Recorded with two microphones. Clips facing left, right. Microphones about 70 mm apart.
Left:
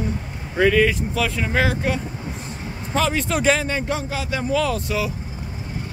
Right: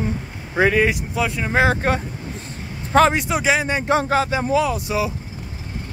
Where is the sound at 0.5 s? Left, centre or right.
Right.